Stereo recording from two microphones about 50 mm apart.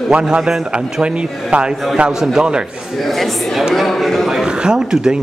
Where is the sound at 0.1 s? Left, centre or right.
Centre.